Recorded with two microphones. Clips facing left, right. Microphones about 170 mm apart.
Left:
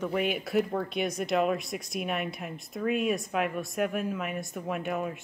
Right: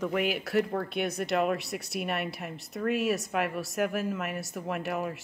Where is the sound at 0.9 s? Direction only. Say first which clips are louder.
Even; 60° right (ahead or behind).